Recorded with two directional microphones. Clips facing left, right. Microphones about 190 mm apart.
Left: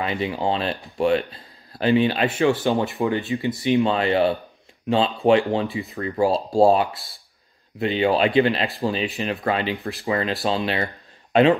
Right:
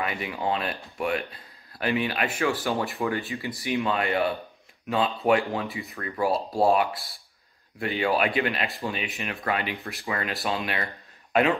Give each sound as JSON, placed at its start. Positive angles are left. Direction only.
{"t": 0.0, "sound": "speech", "side_deg": 25}
{"t": 2.6, "sound": "speech", "side_deg": 20}